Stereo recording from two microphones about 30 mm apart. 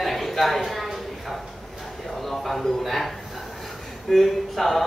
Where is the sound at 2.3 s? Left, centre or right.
Centre.